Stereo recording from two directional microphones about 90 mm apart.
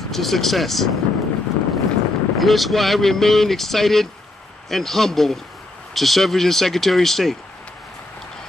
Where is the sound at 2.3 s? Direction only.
Centre (ahead or behind).